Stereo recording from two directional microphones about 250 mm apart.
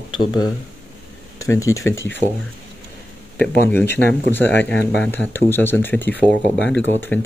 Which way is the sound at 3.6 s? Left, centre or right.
Centre.